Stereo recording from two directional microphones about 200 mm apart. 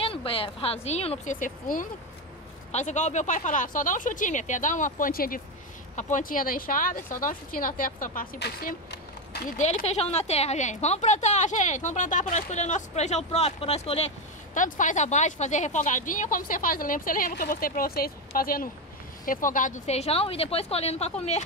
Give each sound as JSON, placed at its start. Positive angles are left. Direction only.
{"t": 0.0, "sound": "a woman's voice", "side_deg": 25}
{"t": 9.6, "sound": "a woman's voice", "side_deg": 35}